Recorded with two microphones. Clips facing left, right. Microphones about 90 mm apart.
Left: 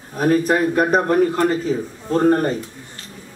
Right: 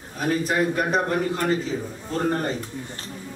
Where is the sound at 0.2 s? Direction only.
45° left (ahead or behind).